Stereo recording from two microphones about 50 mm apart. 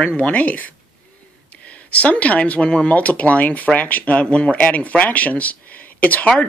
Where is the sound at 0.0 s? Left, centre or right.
Centre.